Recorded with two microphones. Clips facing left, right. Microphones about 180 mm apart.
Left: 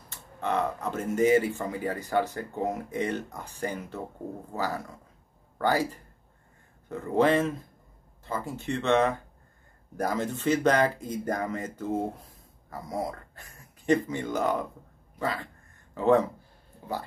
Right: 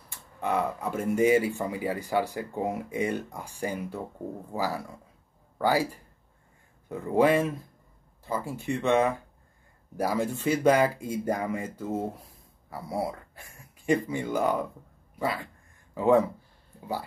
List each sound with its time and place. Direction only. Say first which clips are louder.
0.1 s speech: right 1 dB; 10° right (ahead or behind)
6.9 s speech: right 1 dB; 10° right (ahead or behind)
12.6 s a sound: right 1 dB; 10° right (ahead or behind)
13.0 s speech: right 1 dB; 10° right (ahead or behind)